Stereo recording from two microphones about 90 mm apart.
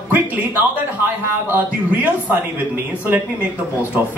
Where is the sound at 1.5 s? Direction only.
20° right (ahead or behind).